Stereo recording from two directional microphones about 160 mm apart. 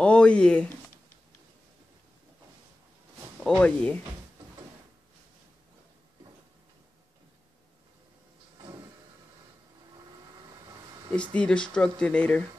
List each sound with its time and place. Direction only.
0.0 s speech: 5° left (ahead or behind)
3.3 s speech: 5° left (ahead or behind)
8.5 s vehicle: 25° right (ahead or behind)
11.3 s speech: 5° left (ahead or behind)